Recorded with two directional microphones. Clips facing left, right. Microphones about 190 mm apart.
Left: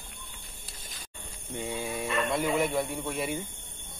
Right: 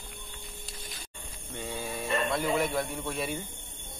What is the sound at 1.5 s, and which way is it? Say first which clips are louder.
Dog: left 3 dB; 10° left (ahead or behind).